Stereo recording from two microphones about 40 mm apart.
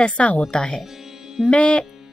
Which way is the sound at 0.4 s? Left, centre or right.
Centre.